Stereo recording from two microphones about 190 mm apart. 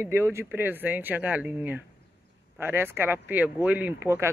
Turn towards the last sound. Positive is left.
turn(degrees=-15)  # may be behind; listen again after turning